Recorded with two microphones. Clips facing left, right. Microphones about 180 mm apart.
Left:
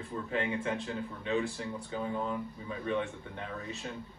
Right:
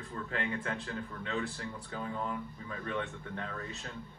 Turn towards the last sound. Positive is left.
turn(degrees=15)  # may be behind; listen again after turning